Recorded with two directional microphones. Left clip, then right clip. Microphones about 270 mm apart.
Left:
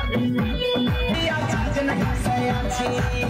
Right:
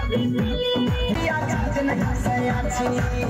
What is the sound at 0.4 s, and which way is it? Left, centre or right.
Music, centre.